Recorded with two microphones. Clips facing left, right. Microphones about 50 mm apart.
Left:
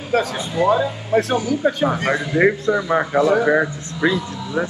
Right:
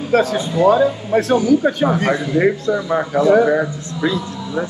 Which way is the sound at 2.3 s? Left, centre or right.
Centre.